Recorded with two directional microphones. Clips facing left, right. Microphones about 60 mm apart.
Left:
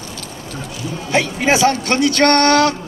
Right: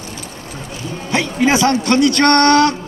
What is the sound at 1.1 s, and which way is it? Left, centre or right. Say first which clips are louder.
Speech: right 1 dB; left.